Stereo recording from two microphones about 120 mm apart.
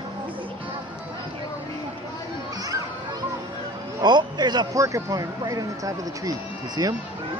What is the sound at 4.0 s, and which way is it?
A man's voice, 35° right (ahead or behind).